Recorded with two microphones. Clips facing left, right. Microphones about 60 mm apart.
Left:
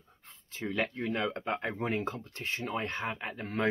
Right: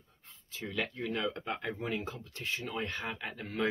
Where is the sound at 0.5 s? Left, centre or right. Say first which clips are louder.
Left 4 dB; left.